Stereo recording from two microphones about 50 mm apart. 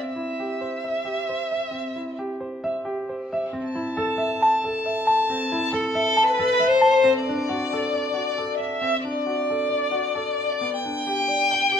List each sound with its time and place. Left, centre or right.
4.1 s music: right
5.9 s violin: centre
11.2 s music: centre